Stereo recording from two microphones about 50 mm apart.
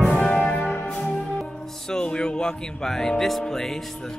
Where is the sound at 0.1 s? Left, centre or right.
Left.